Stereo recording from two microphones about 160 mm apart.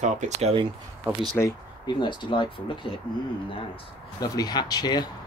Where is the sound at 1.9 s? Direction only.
30° left (ahead or behind).